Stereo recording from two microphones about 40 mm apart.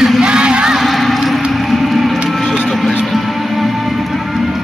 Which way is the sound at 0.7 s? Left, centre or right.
Centre.